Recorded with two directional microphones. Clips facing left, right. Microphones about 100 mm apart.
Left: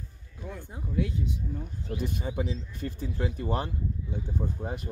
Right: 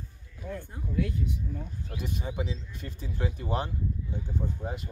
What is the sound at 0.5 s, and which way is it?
Speech, 15° left (ahead or behind).